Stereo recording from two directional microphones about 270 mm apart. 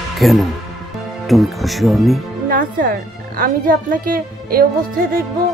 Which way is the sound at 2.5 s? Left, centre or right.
Right.